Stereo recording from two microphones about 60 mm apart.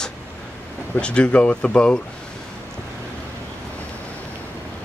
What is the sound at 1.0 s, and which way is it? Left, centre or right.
Speech, centre.